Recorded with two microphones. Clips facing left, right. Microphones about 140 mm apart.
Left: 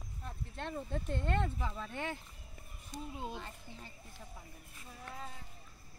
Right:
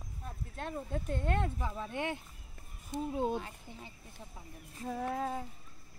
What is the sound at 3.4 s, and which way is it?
Speech, 10° right (ahead or behind).